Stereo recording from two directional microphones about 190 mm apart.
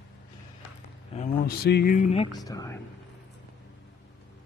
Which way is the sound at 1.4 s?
55° left (ahead or behind).